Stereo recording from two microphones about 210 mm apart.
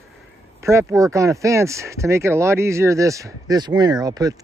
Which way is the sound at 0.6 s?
15° right (ahead or behind).